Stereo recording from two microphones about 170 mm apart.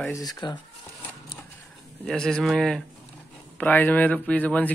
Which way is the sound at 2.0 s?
Centre (ahead or behind).